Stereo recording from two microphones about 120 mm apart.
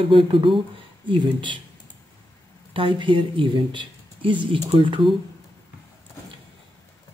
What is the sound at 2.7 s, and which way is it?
Speech, 45° right (ahead or behind).